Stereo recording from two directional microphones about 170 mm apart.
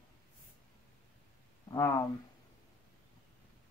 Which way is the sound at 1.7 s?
20° left (ahead or behind).